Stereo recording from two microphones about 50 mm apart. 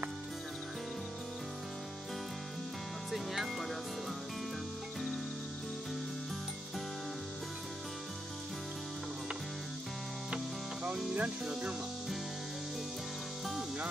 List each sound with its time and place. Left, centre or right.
3.1 s music: centre
10.3 s music: right
11.1 s speech: right